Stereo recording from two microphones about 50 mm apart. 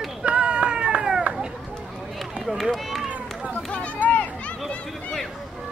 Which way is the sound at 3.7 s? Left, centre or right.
Left.